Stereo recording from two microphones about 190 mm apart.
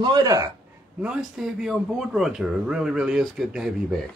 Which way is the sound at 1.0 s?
5° right (ahead or behind).